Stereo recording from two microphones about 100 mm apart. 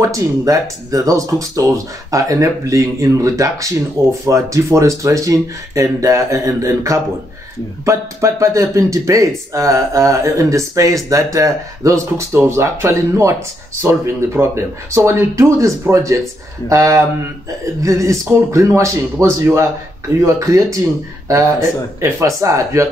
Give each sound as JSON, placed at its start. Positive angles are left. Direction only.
{"t": 0.0, "sound": "speech", "side_deg": -35}
{"t": 22.0, "sound": "speech", "side_deg": -30}